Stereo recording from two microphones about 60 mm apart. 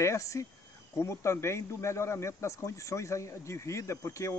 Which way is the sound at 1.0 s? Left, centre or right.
Left.